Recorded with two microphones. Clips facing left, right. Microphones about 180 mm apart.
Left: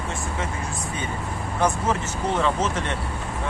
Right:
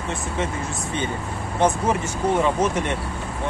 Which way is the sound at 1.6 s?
20° right (ahead or behind).